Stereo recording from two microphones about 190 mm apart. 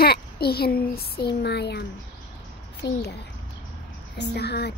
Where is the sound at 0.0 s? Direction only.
55° left (ahead or behind).